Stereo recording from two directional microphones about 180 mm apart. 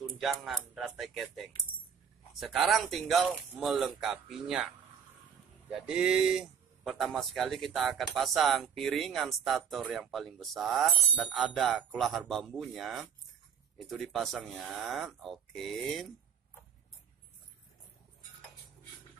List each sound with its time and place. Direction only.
0.2 s speech: centre (ahead or behind)
5.9 s speech: 5° right (ahead or behind)